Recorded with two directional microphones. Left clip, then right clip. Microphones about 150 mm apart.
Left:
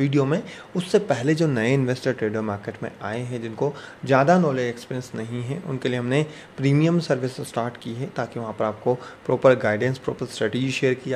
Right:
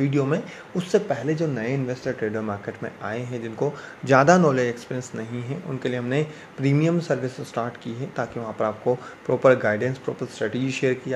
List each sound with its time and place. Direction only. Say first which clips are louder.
0.0 s speech: left 1 dB; 20° left (ahead or behind)
1.0 s speech: left 3 dB; 30° left (ahead or behind)
2.2 s speech: left 1 dB; 15° left (ahead or behind)
4.1 s a man's voice: right 2 dB; 10° right (ahead or behind)
4.6 s speech: right 1 dB; 5° left (ahead or behind)